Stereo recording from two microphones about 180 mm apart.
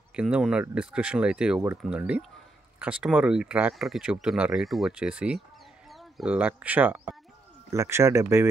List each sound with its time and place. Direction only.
0.1 s speech: 5° right (ahead or behind)